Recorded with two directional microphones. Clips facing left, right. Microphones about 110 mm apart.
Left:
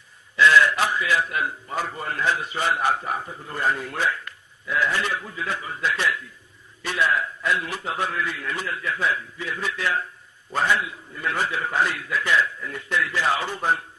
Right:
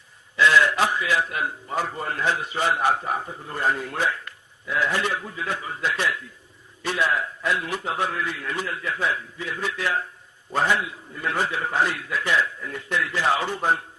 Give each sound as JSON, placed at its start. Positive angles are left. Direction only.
{"t": 0.4, "sound": "a man's voice", "side_deg": -20}
{"t": 12.9, "sound": "a man's voice", "side_deg": -20}